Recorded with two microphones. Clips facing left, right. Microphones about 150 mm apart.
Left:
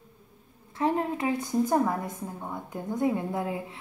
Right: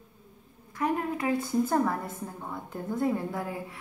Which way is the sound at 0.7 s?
25° left (ahead or behind).